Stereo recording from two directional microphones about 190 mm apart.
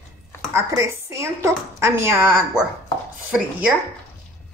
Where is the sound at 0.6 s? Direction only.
15° right (ahead or behind).